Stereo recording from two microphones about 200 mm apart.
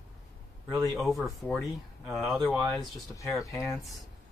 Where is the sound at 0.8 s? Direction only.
Centre (ahead or behind).